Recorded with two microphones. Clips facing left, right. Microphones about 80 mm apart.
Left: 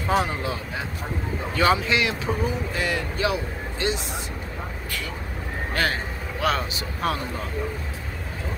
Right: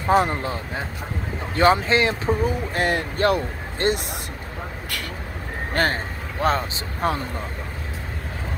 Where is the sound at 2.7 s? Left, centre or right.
Right.